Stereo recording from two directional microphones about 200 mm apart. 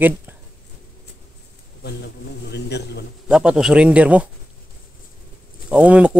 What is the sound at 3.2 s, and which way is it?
Speech, 5° right (ahead or behind).